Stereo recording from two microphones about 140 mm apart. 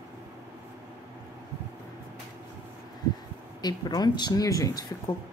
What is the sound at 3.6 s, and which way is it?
Speech, 30° left (ahead or behind).